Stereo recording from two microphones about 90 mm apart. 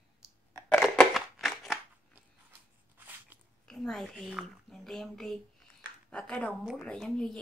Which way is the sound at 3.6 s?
5° left (ahead or behind).